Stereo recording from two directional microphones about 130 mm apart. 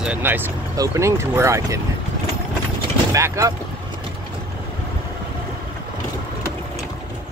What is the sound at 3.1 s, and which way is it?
Speech, 25° right (ahead or behind).